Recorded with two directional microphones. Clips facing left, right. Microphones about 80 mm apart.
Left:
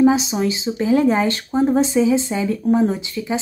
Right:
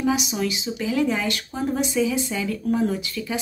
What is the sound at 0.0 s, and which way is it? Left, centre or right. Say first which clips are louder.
Speech: left 8 dB; left.